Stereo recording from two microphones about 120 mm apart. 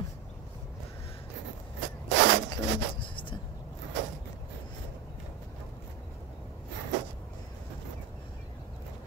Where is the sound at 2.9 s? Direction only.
45° left (ahead or behind).